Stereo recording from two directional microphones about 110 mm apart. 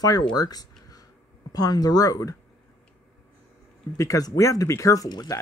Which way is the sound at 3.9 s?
30° left (ahead or behind).